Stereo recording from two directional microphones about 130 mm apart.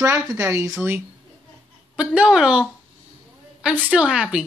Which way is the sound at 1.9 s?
10° right (ahead or behind).